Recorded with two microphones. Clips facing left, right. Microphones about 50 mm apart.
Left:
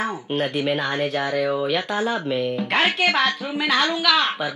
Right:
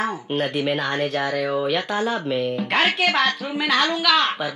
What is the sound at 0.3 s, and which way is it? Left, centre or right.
Speech, centre.